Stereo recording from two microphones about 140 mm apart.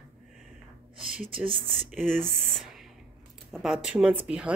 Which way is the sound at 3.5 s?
5° right (ahead or behind).